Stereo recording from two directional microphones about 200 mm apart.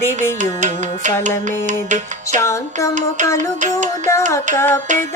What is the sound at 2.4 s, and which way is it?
Music, 15° left (ahead or behind).